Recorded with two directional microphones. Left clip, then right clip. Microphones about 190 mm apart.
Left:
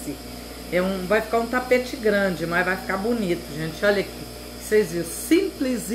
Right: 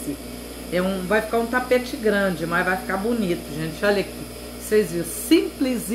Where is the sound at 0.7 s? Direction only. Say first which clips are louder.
Even; 15° right (ahead or behind).